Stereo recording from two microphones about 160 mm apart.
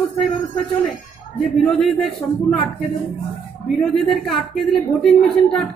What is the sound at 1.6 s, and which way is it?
Speech, 5° left (ahead or behind).